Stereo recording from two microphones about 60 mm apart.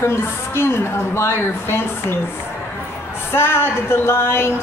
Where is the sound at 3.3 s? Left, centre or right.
Left.